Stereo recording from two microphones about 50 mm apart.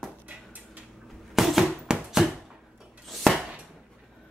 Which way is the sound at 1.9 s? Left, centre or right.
Centre.